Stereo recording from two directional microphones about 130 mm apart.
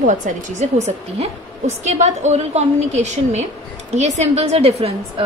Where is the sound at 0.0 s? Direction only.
75° right (ahead or behind).